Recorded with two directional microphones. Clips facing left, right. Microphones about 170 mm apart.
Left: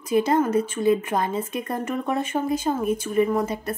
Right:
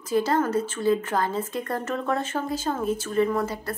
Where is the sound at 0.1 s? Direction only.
20° left (ahead or behind).